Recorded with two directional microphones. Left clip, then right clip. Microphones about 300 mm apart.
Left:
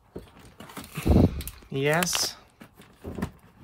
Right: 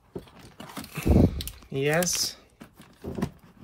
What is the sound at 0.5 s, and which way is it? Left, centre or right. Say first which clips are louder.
Horse: right 2 dB; centre.